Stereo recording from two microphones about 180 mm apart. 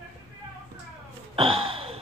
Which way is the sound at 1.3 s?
30° right (ahead or behind).